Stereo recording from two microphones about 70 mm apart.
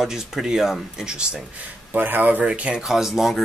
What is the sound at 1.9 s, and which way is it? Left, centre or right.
Speech, right.